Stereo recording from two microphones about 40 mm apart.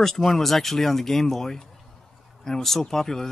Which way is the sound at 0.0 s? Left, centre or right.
Centre.